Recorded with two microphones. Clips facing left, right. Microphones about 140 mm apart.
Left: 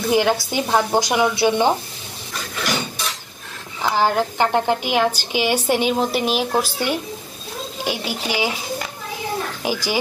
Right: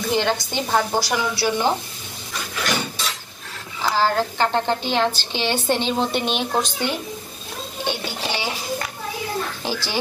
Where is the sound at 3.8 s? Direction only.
15° left (ahead or behind).